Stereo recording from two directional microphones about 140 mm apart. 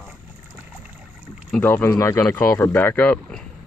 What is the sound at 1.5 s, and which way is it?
Speech, 15° left (ahead or behind).